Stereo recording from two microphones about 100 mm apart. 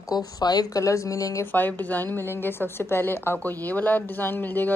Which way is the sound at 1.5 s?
20° left (ahead or behind).